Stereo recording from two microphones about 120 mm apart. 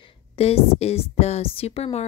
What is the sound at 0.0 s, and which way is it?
A woman's voice, 55° left (ahead or behind).